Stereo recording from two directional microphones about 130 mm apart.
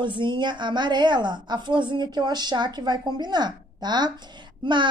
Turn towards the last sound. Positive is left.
turn(degrees=-35)  # may be behind; listen again after turning